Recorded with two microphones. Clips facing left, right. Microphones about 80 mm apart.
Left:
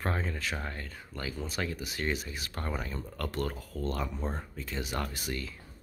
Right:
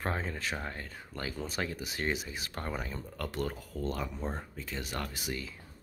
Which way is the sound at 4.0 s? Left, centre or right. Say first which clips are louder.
Left 1 dB; centre.